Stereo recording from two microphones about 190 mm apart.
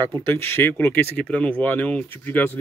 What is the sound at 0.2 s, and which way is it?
Speech, 10° left (ahead or behind).